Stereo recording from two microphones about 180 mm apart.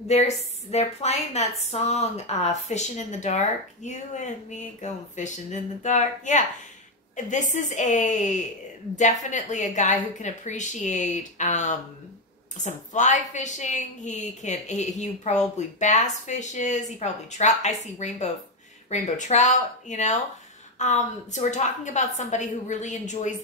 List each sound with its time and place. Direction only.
0.1 s a woman's voice: 35° left (ahead or behind)